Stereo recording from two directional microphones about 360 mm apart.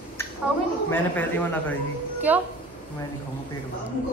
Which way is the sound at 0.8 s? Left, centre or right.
Centre.